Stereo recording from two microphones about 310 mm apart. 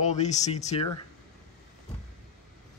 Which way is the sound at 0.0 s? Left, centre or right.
Left.